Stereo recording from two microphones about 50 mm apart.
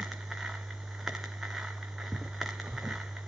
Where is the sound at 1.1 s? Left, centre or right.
Centre.